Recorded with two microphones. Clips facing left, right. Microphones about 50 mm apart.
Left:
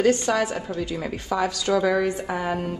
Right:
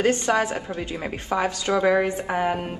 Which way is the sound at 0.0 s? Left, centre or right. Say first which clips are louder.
Even; right.